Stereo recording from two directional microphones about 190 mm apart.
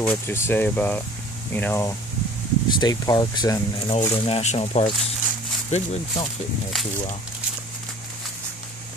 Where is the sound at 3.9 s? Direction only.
30° left (ahead or behind).